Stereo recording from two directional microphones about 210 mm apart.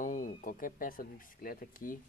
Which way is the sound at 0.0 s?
40° left (ahead or behind).